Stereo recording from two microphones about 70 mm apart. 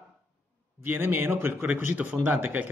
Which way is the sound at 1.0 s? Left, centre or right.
Right.